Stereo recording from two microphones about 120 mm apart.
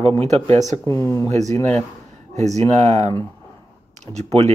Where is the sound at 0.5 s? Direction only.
80° right.